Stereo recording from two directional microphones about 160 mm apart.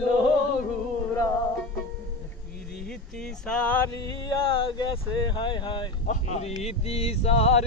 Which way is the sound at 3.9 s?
25° left (ahead or behind).